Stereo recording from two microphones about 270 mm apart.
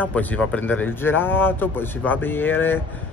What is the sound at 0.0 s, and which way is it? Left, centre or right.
Speech, centre.